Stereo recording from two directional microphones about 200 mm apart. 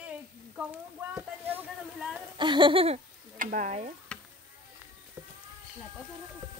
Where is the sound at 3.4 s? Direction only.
40° right (ahead or behind).